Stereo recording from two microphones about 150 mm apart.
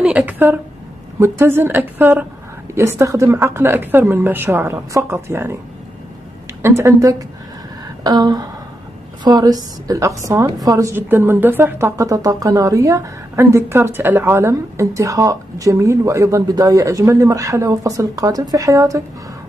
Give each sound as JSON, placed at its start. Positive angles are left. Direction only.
{"t": 0.0, "sound": "a sound", "side_deg": -10}
{"t": 1.2, "sound": "a woman's voice", "side_deg": -15}
{"t": 6.6, "sound": "a woman's voice", "side_deg": -15}